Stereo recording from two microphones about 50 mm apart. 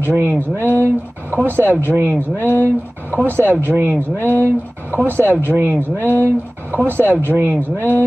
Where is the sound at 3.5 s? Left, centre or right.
Right.